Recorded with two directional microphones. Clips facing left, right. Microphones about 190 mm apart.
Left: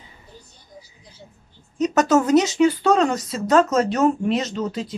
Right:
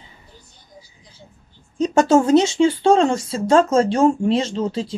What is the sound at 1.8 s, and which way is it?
Speech, 30° right (ahead or behind).